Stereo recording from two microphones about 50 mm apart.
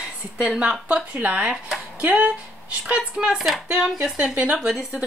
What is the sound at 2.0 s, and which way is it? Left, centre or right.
Speech, right.